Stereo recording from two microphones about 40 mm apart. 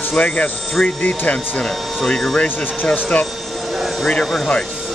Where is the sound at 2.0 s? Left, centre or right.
Centre.